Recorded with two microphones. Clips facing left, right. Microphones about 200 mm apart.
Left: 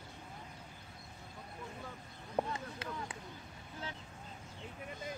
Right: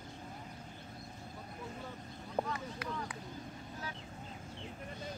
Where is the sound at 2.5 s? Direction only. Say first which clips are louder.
Right 2 dB; 25° left (ahead or behind).